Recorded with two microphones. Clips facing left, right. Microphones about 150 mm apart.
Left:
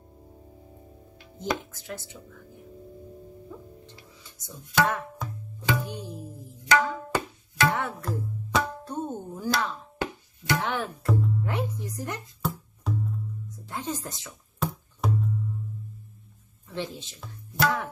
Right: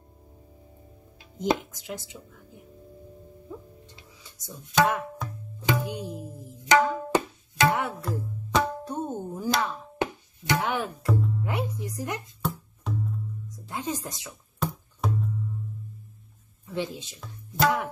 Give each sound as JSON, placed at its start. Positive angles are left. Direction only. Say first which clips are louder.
{"t": 1.6, "sound": "speech", "louder": "right 1 dB", "side_deg": -15}
{"t": 4.5, "sound": "music", "louder": "right 2 dB", "side_deg": -15}
{"t": 5.6, "sound": "tabla", "louder": "right 2 dB", "side_deg": -15}
{"t": 8.0, "sound": "music", "louder": "even", "side_deg": 0}
{"t": 8.8, "sound": "music", "louder": "right 1 dB", "side_deg": -10}
{"t": 11.1, "sound": "music", "louder": "left 1 dB", "side_deg": 0}
{"t": 11.4, "sound": "speech", "louder": "even", "side_deg": -10}
{"t": 12.4, "sound": "music", "louder": "even", "side_deg": 0}
{"t": 13.7, "sound": "music", "louder": "right 1 dB", "side_deg": -10}
{"t": 14.6, "sound": "music", "louder": "even", "side_deg": 0}
{"t": 16.6, "sound": "speech", "louder": "right 3 dB", "side_deg": -15}
{"t": 17.6, "sound": "music", "louder": "right 2 dB", "side_deg": -15}